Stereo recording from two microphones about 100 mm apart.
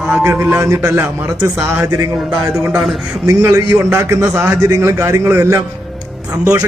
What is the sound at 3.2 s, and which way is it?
A man's voice, 30° right (ahead or behind).